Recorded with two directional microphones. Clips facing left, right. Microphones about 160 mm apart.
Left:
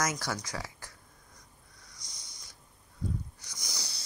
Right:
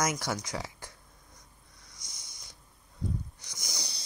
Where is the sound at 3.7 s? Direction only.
20° right (ahead or behind).